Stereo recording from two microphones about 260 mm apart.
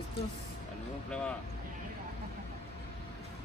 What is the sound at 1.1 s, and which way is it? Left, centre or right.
Speech, centre.